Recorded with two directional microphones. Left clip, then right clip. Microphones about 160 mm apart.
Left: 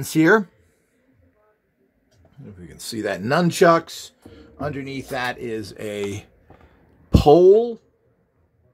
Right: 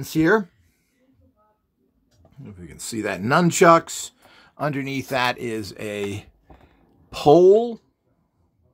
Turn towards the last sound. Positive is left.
turn(degrees=-15)  # may be behind; listen again after turning